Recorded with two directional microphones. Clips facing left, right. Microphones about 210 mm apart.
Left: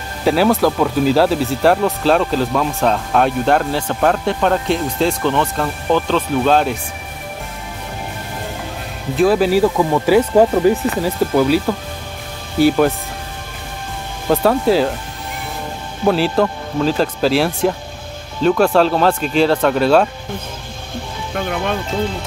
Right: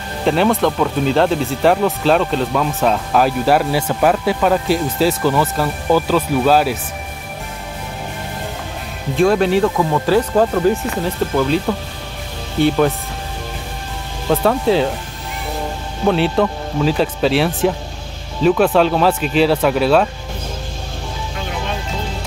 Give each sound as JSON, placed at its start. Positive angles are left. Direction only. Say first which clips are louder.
{"t": 0.2, "sound": "speech", "louder": "left 1 dB", "side_deg": 5}
{"t": 9.1, "sound": "speech", "louder": "left 1 dB", "side_deg": 0}
{"t": 14.3, "sound": "speech", "louder": "left 1 dB", "side_deg": 0}
{"t": 16.1, "sound": "speech", "louder": "even", "side_deg": 0}
{"t": 21.4, "sound": "music", "louder": "left 6 dB", "side_deg": 55}